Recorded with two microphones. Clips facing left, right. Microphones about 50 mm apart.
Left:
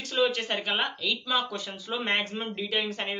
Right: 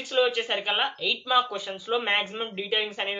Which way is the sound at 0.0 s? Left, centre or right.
Centre.